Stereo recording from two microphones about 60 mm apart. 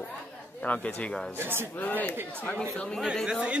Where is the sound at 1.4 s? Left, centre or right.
Right.